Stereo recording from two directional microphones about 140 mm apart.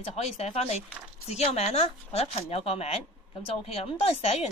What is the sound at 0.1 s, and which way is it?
Speech, 50° left (ahead or behind).